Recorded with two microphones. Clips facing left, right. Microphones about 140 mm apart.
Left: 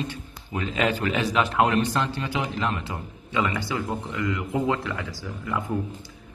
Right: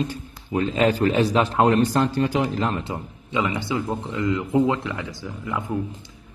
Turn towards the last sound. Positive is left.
turn(degrees=-20)  # may be behind; listen again after turning